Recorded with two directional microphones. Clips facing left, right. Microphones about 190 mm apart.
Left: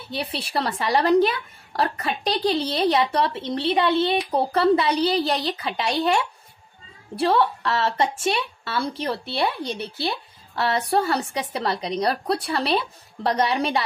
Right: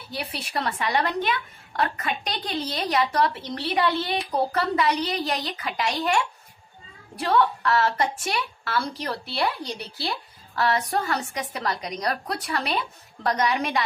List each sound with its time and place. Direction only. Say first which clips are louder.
0.1 s a woman's voice: left 4 dB; 25° left (ahead or behind)
7.2 s a woman's voice: left 2 dB; 30° left (ahead or behind)